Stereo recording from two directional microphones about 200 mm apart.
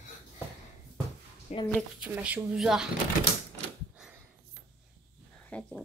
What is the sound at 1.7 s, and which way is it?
Speech, centre (ahead or behind).